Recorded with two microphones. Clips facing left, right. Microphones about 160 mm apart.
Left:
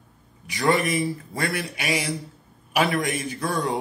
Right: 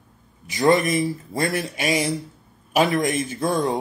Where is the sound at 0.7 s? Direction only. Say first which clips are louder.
Right 4 dB; 45° right (ahead or behind).